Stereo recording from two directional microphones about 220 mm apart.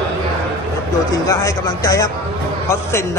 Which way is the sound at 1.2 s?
15° left (ahead or behind).